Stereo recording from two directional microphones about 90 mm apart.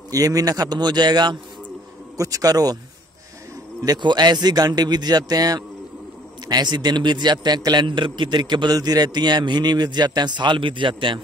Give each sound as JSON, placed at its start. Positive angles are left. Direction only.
{"t": 0.1, "sound": "a man's voice", "side_deg": -40}
{"t": 2.1, "sound": "a man's voice", "side_deg": -40}
{"t": 3.8, "sound": "a man's voice", "side_deg": -50}